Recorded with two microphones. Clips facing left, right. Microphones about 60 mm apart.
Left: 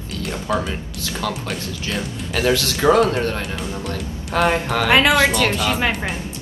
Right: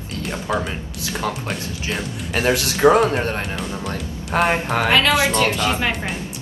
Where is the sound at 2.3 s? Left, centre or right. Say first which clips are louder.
Even; right.